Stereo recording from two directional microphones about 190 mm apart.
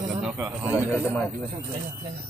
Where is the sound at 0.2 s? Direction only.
5° right (ahead or behind).